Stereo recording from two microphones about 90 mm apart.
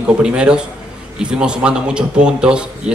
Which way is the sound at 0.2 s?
10° right (ahead or behind).